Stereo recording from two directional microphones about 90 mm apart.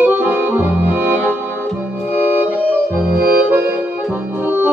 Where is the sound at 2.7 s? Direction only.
20° right (ahead or behind).